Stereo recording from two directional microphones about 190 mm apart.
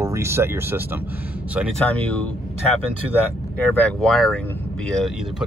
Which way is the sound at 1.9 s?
10° left (ahead or behind).